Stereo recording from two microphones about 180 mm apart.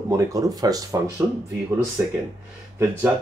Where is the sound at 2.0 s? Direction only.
10° right (ahead or behind).